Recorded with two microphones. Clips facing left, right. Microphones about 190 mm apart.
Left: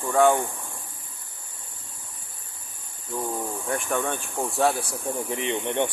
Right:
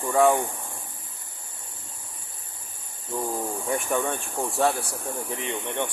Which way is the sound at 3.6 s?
Centre (ahead or behind).